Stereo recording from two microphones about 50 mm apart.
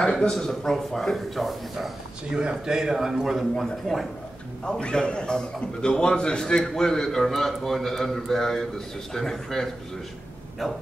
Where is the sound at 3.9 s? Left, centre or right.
Centre.